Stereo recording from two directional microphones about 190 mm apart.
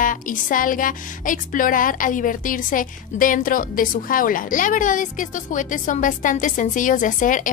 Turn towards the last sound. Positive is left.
turn(degrees=45)  # may be behind; listen again after turning